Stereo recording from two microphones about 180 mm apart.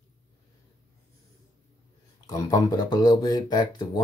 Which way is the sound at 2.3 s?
20° left (ahead or behind).